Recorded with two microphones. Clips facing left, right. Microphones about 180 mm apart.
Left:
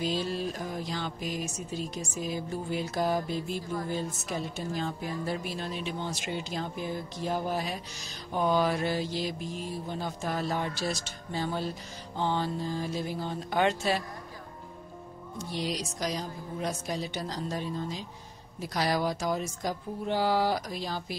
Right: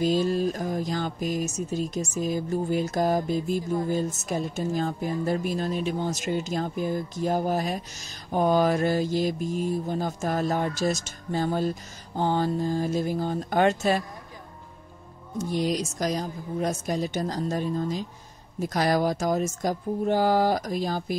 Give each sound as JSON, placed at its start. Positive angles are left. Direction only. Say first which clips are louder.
{"t": 0.0, "sound": "speech", "louder": "right 7 dB", "side_deg": -45}
{"t": 15.3, "sound": "speech", "louder": "right 7 dB", "side_deg": -45}